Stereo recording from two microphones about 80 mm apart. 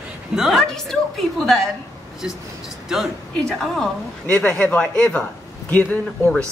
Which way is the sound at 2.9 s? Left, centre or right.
Centre.